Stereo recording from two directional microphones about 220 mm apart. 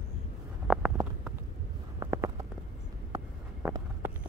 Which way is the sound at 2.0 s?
15° right (ahead or behind).